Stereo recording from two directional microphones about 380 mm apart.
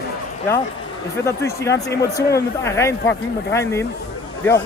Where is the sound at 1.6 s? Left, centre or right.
Centre.